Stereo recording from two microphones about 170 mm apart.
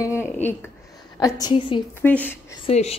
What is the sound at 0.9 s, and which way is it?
Speech, 25° left (ahead or behind).